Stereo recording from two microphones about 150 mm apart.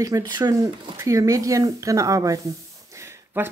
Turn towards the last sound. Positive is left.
turn(degrees=-15)  # may be behind; listen again after turning